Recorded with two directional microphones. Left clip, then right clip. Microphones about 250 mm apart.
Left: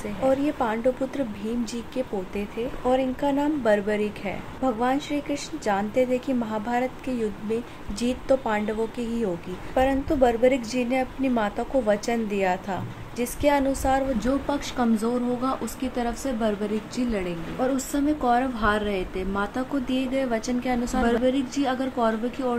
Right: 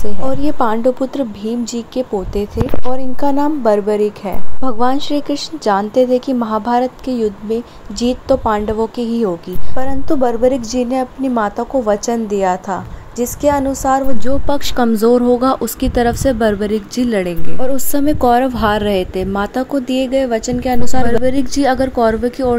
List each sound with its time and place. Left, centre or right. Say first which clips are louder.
0.2 s a woman's voice: right 6 dB; right
14.2 s speech: right 8 dB; right